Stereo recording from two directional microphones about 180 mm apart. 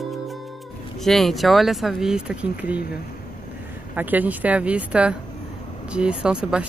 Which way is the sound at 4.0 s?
10° right (ahead or behind).